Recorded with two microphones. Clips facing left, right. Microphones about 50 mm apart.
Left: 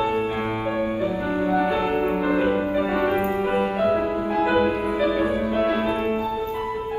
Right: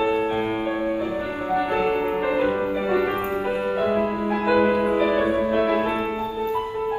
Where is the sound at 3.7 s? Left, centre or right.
Right.